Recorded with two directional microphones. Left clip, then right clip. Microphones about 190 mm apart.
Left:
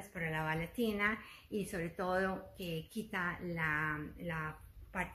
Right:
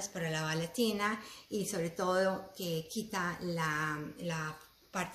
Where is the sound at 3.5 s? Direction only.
20° left (ahead or behind).